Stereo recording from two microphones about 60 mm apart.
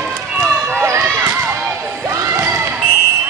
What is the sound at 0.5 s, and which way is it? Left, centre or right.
Run, right.